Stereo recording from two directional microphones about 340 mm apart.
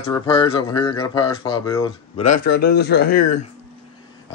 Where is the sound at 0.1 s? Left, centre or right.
Centre.